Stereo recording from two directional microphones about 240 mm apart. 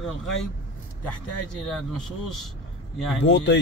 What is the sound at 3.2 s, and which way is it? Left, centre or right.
Speech, left.